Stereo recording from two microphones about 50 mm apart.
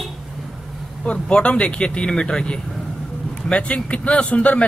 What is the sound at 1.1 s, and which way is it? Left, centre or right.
A man's voice, left.